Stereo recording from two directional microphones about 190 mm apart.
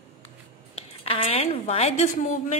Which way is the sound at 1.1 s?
35° left (ahead or behind).